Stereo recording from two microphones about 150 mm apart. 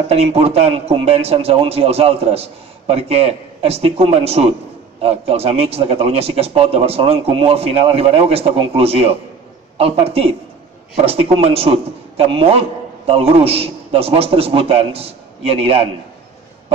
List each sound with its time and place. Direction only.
0.1 s a man's voice: 40° right (ahead or behind)